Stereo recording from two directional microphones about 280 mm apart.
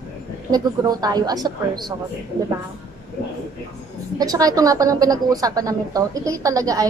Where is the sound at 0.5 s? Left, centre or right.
Centre.